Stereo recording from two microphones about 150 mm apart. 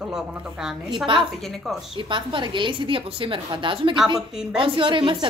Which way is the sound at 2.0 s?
35° right (ahead or behind).